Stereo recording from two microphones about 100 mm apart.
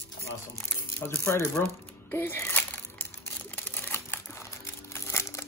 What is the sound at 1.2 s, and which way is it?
Speech, 25° left (ahead or behind).